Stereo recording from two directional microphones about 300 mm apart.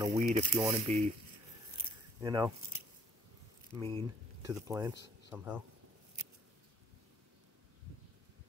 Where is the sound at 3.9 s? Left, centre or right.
Centre.